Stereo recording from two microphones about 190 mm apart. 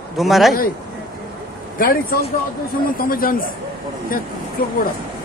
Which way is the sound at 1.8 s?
50° left (ahead or behind).